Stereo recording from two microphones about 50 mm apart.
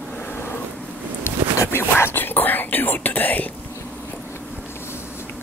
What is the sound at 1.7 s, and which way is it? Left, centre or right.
Speech, left.